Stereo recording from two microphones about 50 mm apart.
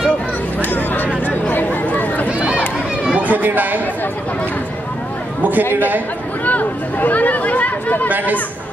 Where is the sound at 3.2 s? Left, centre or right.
Right.